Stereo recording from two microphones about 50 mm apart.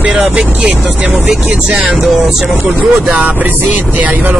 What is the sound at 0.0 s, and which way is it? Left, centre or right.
Speech, right.